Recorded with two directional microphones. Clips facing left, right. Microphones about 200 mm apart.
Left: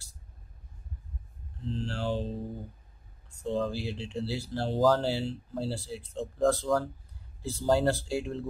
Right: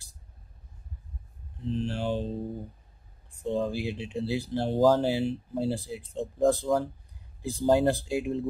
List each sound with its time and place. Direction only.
1.6 s speech: 20° right (ahead or behind)
3.3 s speech: 20° right (ahead or behind)